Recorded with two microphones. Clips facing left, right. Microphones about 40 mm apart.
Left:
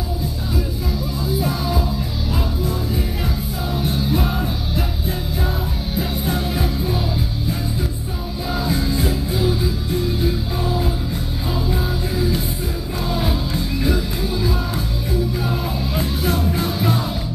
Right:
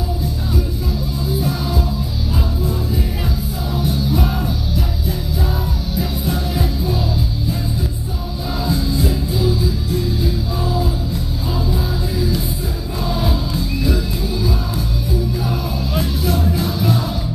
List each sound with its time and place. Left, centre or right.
3.8 s music: left
5.9 s music: left
6.6 s music: centre
8.6 s music: left
10.6 s music: left
13.1 s music: centre
16.2 s music: left